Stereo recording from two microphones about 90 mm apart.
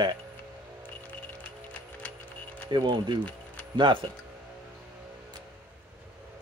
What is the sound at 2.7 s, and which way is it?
Speech, 55° right (ahead or behind).